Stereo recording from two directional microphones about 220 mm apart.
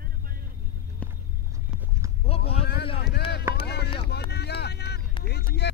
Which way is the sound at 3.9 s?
50° left (ahead or behind).